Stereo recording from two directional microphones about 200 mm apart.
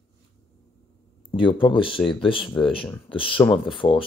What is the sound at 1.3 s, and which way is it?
Speech, 25° left (ahead or behind).